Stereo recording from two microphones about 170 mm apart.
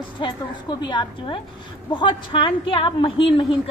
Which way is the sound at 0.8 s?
25° left (ahead or behind).